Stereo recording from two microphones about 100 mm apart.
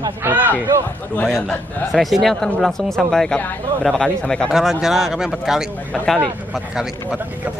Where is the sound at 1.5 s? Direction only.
Centre (ahead or behind).